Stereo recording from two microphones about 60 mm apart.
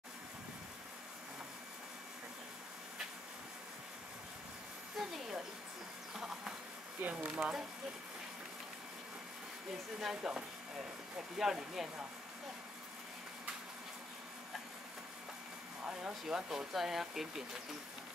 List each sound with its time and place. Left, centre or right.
4.9 s a sound: centre
6.1 s insect: centre
7.0 s speech: right
7.3 s speech: centre
9.9 s speech: centre
15.8 s speech: centre